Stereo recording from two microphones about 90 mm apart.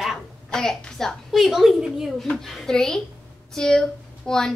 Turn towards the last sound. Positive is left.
turn(degrees=5)  # may be behind; listen again after turning